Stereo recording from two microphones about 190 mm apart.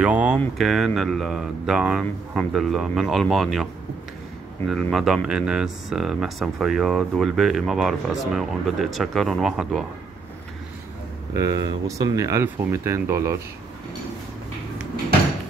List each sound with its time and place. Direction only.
0.0 s speech: 5° right (ahead or behind)
4.6 s speech: centre (ahead or behind)
11.3 s speech: 20° right (ahead or behind)